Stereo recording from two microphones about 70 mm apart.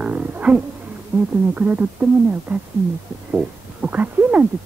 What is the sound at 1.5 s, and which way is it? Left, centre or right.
Speech, right.